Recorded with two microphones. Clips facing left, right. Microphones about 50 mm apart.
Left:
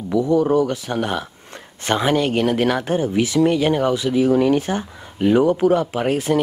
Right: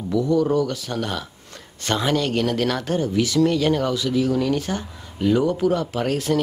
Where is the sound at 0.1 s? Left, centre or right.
Centre.